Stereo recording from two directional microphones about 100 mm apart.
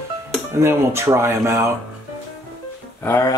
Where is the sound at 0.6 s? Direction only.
25° right (ahead or behind).